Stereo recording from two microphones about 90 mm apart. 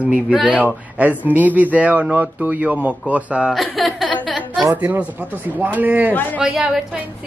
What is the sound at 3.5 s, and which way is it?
Speech, centre (ahead or behind).